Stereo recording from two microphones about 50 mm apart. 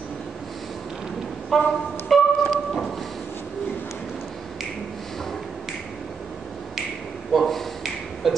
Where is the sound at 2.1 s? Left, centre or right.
Centre.